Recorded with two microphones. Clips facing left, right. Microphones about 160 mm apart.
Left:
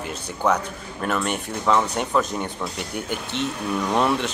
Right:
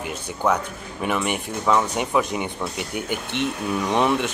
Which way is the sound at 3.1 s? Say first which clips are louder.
Right 1 dB; 60° right (ahead or behind).